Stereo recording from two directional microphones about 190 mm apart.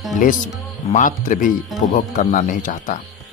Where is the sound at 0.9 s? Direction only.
45° left (ahead or behind).